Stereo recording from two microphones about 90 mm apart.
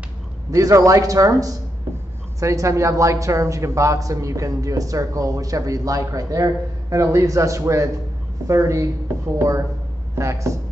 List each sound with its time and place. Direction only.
0.5 s a woman's voice: 40° right (ahead or behind)
10.1 s a woman's voice: 35° right (ahead or behind)